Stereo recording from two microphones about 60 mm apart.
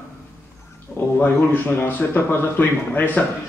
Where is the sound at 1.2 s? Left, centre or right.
Left.